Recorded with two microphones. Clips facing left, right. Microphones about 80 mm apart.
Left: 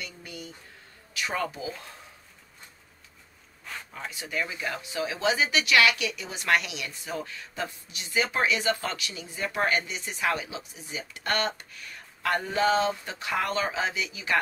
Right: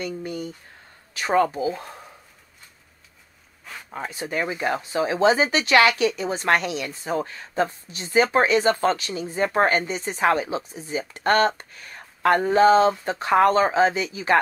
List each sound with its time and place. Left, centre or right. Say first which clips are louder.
0.0 s speech: right 11 dB; right
3.9 s speech: right 7 dB; right